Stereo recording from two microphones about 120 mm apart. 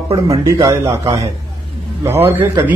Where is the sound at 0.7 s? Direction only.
25° right (ahead or behind).